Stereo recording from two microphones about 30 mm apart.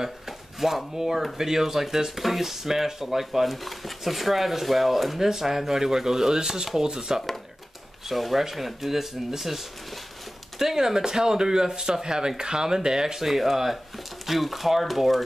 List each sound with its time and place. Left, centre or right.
0.6 s speech: centre
8.1 s speech: centre
10.6 s speech: centre
13.3 s speech: centre